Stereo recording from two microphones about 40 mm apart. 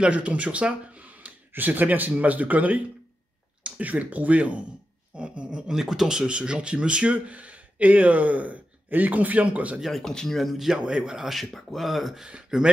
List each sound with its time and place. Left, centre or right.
0.0 s speech: right
1.5 s speech: right
3.6 s a sound: right
3.9 s speech: right
5.7 s speech: centre; by 7.2 s right
7.2 s speech: right
9.8 s speech: centre
10.5 s speech: centre
10.8 s speech: right
11.3 s speech: centre
12.5 s speech: centre